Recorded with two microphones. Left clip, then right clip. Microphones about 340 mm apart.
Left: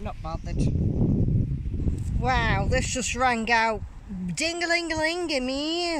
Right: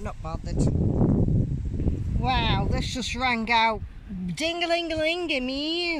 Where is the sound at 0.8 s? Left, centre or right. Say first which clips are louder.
Right 3 dB; right.